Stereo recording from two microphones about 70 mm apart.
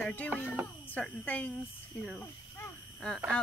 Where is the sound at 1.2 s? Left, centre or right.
Left.